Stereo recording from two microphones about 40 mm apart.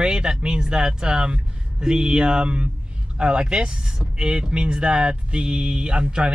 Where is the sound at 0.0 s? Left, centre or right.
Centre.